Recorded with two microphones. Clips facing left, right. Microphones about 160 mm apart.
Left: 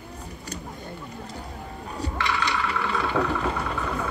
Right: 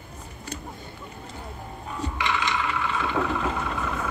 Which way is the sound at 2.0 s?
35° left (ahead or behind).